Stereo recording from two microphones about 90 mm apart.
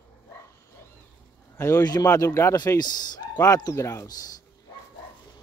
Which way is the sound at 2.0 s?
35° left (ahead or behind).